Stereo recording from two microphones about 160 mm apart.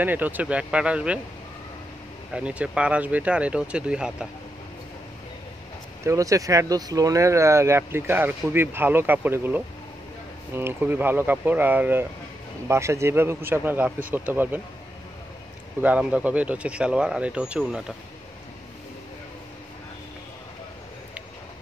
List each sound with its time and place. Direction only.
0.0 s speech: 10° right (ahead or behind)
2.3 s speech: 5° right (ahead or behind)
6.0 s speech: 20° right (ahead or behind)
15.8 s speech: 10° right (ahead or behind)